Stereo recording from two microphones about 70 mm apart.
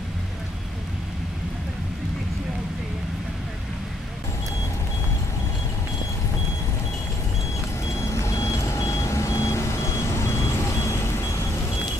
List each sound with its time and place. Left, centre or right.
8.0 s vehicle: left